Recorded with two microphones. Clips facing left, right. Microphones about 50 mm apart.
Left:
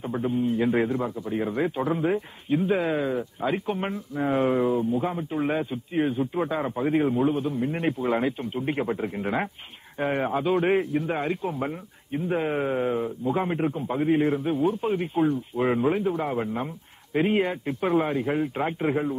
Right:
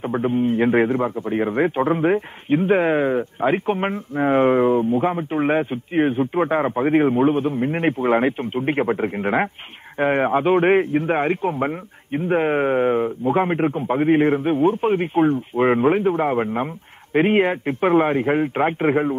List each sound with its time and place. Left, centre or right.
0.0 s a man's voice: right